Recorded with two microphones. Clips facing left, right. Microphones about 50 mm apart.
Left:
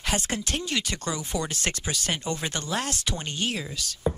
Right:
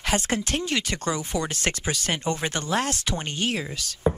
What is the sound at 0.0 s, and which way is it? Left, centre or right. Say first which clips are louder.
Speech: right 3 dB; right.